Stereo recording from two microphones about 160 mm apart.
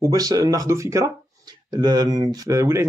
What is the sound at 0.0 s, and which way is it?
Speech, 20° right (ahead or behind).